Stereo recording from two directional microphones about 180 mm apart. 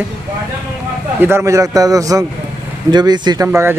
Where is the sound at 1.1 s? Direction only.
15° right (ahead or behind).